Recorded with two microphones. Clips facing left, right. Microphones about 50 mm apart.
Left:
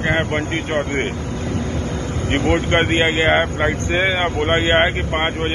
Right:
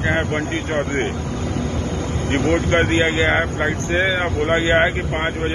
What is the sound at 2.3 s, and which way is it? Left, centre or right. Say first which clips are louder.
Speech: even; left.